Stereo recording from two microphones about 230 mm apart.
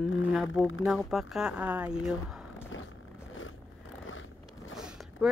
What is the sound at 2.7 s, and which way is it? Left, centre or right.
Vehicle, left.